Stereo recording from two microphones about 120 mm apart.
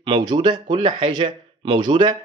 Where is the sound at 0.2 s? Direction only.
40° right (ahead or behind).